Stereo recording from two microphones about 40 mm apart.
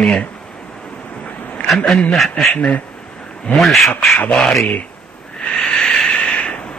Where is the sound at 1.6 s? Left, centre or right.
Centre.